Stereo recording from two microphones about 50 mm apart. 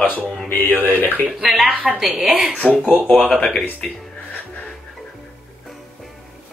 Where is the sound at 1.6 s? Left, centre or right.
Centre.